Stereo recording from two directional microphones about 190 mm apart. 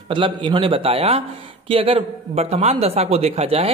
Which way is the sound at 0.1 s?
25° right (ahead or behind).